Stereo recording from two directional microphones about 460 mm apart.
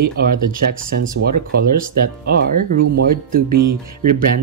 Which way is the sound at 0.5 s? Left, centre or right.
Centre.